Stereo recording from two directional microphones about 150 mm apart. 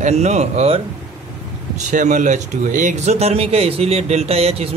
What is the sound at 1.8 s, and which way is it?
Speech, 55° right (ahead or behind).